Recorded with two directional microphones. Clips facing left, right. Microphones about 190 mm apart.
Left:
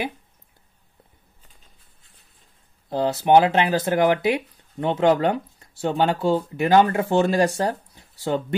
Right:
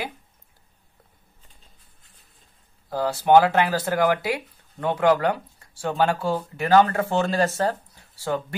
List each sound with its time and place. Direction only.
2.9 s speech: 20° left (ahead or behind)